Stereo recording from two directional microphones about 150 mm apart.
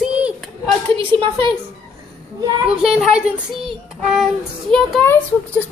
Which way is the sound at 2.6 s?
5° right (ahead or behind).